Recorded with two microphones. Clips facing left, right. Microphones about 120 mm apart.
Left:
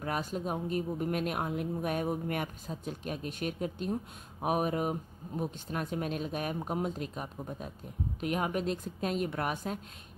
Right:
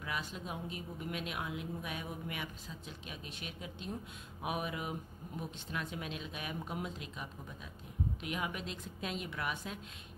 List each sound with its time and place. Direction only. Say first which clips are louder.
0.0 s speech: left 8 dB; 45° left (ahead or behind)